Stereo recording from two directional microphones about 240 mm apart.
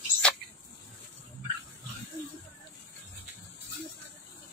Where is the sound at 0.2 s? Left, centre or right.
Centre.